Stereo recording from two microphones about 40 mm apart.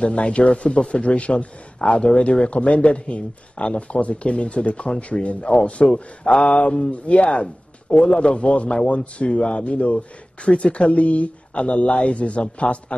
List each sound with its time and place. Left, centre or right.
0.0 s speech: left